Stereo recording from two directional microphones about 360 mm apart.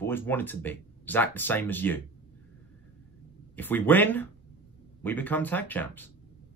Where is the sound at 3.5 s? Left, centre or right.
Centre.